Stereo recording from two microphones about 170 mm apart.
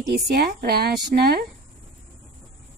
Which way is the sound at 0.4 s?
70° right (ahead or behind).